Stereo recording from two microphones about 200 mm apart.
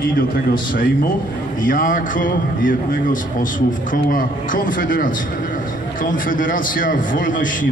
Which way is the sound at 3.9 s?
45° left (ahead or behind).